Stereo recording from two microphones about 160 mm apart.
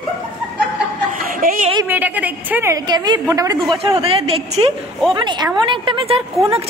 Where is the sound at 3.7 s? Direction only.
35° right (ahead or behind).